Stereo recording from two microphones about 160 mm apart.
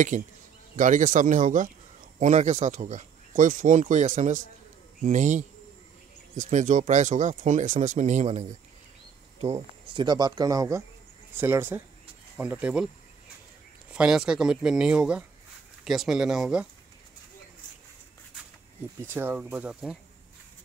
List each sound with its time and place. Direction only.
0.1 s speech: 55° right (ahead or behind)
9.4 s speech: 35° right (ahead or behind); by 12.8 s 10° right (ahead or behind)
13.9 s speech: 5° right (ahead or behind)
18.9 s speech: 15° right (ahead or behind)